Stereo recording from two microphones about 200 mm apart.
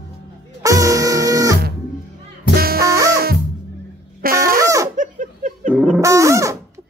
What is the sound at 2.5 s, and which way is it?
Music, 50° right (ahead or behind).